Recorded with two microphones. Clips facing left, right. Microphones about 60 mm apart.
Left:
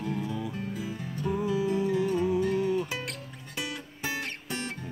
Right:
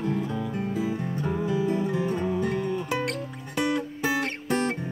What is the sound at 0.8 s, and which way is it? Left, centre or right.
Music, right.